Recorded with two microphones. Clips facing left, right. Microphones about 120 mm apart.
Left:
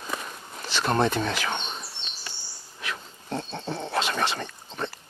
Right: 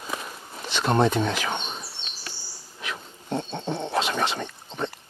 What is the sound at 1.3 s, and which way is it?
Speech, 15° right (ahead or behind).